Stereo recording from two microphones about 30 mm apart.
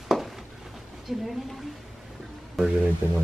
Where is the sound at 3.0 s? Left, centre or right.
Right.